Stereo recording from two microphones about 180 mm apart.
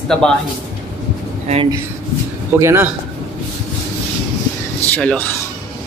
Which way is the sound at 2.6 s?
15° right (ahead or behind).